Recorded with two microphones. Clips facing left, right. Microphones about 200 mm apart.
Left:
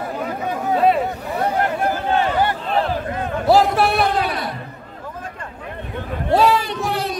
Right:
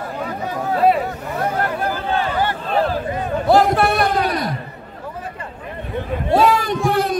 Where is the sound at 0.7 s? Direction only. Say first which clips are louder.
Right 1 dB; centre (ahead or behind).